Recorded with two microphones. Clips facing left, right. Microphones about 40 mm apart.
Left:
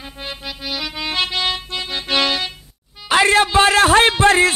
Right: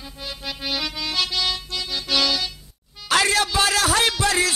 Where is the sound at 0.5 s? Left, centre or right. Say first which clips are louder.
Right 1 dB; centre.